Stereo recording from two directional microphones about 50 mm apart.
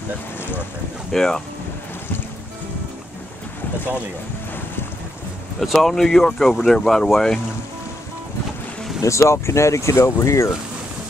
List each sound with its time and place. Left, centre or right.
1.1 s speech: centre
5.6 s speech: centre
9.0 s speech: left